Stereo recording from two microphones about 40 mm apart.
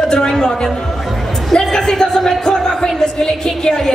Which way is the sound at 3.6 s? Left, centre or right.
Centre.